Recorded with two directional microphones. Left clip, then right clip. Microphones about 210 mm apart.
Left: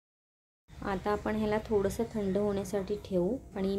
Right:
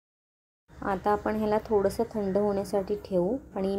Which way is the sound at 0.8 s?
5° left (ahead or behind).